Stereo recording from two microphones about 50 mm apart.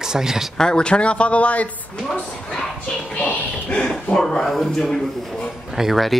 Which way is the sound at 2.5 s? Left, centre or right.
Centre.